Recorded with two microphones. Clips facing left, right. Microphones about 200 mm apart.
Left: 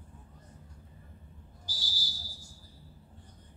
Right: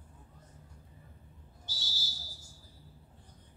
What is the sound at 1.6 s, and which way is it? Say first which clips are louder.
Whistle: left 1 dB; 25° right (ahead or behind).